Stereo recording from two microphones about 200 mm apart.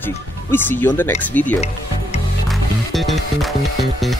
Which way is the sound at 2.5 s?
Centre (ahead or behind).